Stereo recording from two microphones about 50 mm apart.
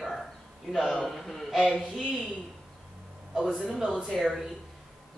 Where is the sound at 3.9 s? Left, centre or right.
Left.